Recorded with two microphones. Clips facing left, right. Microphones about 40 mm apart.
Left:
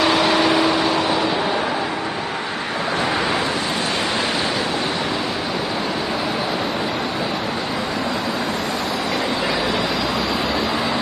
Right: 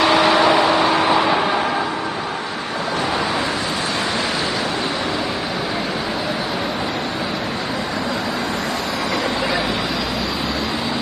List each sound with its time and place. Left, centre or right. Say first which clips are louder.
0.0 s vehicle: right 2 dB; centre
0.9 s vehicle: right 3 dB; centre